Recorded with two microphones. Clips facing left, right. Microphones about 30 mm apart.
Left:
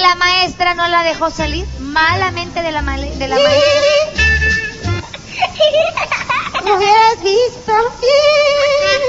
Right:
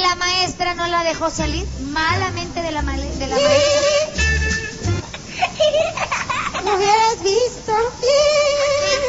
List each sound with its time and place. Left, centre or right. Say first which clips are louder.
0.0 s a sound: left 7 dB; left
2.0 s speech: left 7 dB; left
5.4 s baby laughter: left 5 dB; left
6.5 s speech: left 6 dB; left